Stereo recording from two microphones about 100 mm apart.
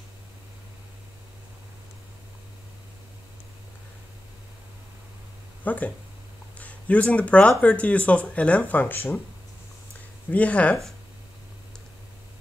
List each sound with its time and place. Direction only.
5.6 s speech: 15° left (ahead or behind)
10.3 s speech: 15° left (ahead or behind)